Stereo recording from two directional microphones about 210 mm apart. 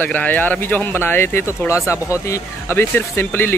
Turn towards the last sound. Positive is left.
turn(degrees=10)  # may be behind; listen again after turning